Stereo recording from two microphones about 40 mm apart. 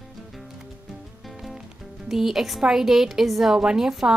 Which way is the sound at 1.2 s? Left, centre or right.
Centre.